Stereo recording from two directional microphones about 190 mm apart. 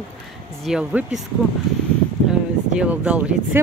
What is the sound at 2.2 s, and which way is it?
Speech, 5° right (ahead or behind).